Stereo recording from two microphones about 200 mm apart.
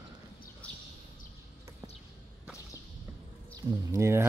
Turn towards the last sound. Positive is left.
turn(degrees=-15)  # may be behind; listen again after turning